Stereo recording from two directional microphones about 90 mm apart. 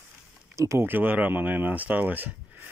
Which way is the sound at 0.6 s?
35° right (ahead or behind).